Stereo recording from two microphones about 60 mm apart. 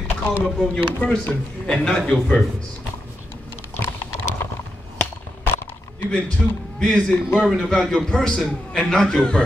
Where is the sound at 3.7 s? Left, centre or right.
Left.